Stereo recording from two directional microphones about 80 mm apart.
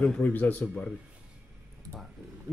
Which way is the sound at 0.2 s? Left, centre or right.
Left.